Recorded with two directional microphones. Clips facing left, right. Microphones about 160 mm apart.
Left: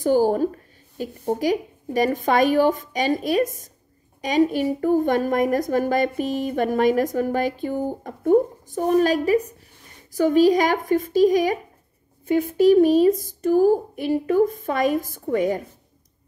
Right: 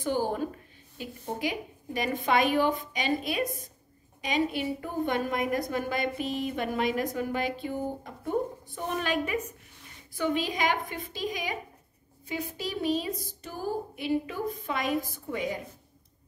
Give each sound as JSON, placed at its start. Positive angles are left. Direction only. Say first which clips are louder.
{"t": 0.0, "sound": "a woman's voice", "louder": "left 10 dB", "side_deg": 40}